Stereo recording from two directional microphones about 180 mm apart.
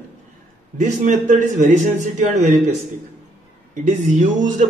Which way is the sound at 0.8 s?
45° right (ahead or behind).